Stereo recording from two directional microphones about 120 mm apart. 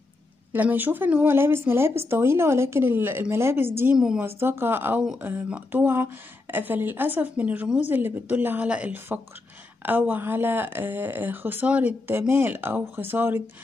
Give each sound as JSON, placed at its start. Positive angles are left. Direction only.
{"t": 0.5, "sound": "speech", "side_deg": -15}
{"t": 3.9, "sound": "speech", "side_deg": -5}
{"t": 4.4, "sound": "speech", "side_deg": -20}